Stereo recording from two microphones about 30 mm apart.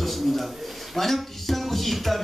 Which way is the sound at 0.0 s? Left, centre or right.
Centre.